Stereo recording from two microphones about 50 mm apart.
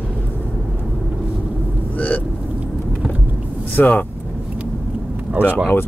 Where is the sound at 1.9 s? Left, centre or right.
Left.